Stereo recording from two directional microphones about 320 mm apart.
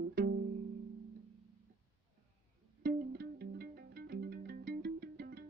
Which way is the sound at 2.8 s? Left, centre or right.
Right.